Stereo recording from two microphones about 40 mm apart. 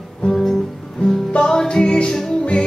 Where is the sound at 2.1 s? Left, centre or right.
Centre.